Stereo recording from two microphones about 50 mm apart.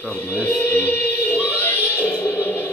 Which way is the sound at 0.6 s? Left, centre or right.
Left.